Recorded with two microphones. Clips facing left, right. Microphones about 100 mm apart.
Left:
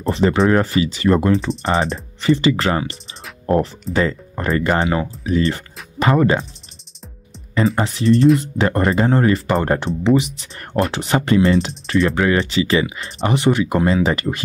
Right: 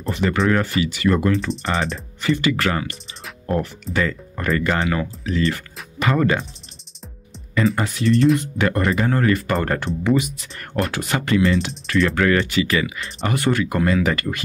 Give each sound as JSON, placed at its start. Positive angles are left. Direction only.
{"t": 0.0, "sound": "speech", "side_deg": 30}
{"t": 7.5, "sound": "speech", "side_deg": 30}